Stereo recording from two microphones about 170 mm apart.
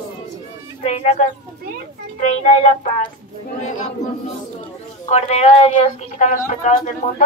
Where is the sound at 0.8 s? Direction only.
40° left (ahead or behind).